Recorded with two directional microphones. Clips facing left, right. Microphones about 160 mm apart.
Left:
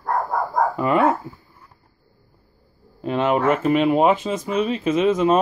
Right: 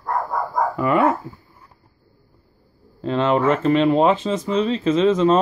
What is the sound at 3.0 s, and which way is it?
Speech, 15° left (ahead or behind).